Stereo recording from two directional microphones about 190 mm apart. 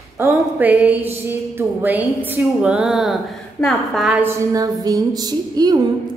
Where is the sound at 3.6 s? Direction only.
Centre (ahead or behind).